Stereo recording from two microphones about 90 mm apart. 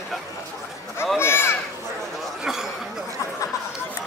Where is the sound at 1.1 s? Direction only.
25° left (ahead or behind).